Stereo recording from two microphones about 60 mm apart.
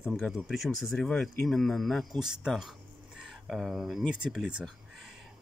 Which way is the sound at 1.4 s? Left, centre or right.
Centre.